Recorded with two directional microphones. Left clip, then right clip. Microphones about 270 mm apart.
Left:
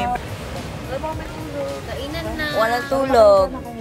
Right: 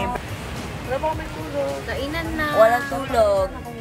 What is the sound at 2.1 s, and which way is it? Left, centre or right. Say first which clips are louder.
Music: right 4 dB; centre.